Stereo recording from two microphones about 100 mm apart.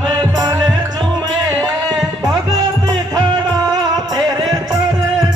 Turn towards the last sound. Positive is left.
turn(degrees=-45)  # may be behind; listen again after turning